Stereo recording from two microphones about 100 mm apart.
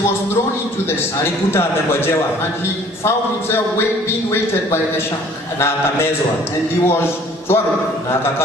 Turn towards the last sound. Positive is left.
turn(degrees=25)  # may be behind; listen again after turning